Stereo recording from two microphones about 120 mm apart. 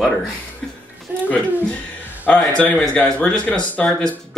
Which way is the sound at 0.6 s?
Centre (ahead or behind).